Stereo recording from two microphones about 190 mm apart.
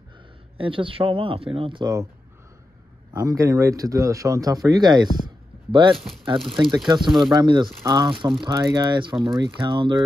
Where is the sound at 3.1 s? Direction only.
15° right (ahead or behind).